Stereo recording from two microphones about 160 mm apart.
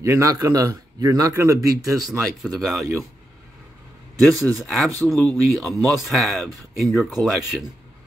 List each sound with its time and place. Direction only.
0.0 s a man's voice: 20° right (ahead or behind)
2.2 s speech: centre (ahead or behind)
4.2 s speech: centre (ahead or behind)